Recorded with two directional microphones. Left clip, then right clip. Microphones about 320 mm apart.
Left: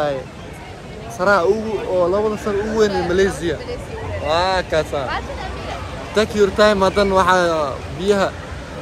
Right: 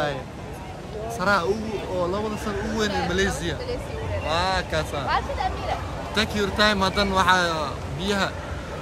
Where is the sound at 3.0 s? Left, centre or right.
Centre.